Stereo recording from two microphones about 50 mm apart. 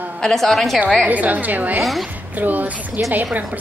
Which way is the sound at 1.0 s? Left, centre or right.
Right.